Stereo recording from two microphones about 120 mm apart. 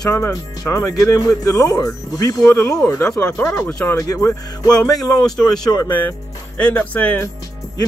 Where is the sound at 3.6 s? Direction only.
25° left (ahead or behind).